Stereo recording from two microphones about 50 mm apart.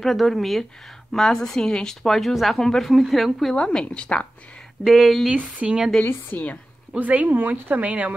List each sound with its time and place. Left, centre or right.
0.0 s a woman's voice: centre
2.0 s speech: centre
3.5 s a woman's voice: centre
4.8 s speech: centre
5.3 s a woman's voice: centre
6.0 s a woman's voice: left
7.0 s speech: right